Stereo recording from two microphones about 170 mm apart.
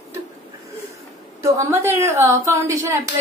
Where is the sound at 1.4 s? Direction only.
15° right (ahead or behind).